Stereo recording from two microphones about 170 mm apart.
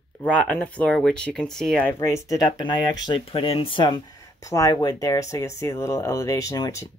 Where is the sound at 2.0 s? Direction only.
20° left (ahead or behind).